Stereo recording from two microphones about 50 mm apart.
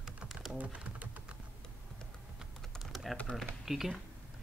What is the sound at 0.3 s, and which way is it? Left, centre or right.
Typing, centre.